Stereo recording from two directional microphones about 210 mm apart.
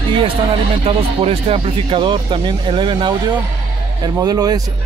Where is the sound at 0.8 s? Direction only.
25° right (ahead or behind).